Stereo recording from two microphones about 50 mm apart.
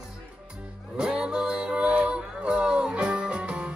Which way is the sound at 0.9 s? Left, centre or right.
Centre.